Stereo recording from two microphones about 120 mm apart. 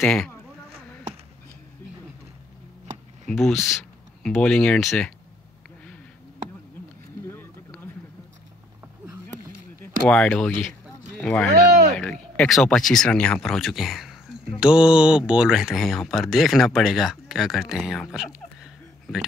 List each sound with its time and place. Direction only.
0.0 s speech: 5° left (ahead or behind)
3.3 s speech: centre (ahead or behind)
7.2 s a sound: 20° left (ahead or behind)
10.0 s speech: 10° left (ahead or behind)